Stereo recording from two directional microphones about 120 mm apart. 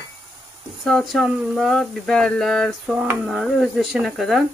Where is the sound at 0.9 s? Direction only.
5° left (ahead or behind).